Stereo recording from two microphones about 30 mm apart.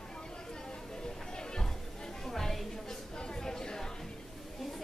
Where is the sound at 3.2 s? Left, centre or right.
Left.